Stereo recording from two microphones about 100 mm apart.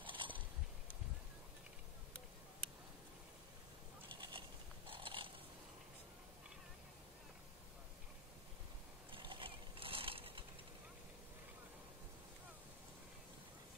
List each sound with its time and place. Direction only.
0.0 s boat: 55° right (ahead or behind)
4.1 s mechanisms: 55° right (ahead or behind)
9.1 s a sound: 60° right (ahead or behind)